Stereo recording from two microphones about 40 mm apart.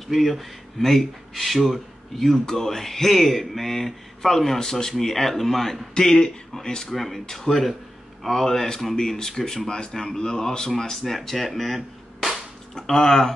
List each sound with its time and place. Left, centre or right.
0.1 s speech: centre
6.9 s speech: centre
12.7 s speech: centre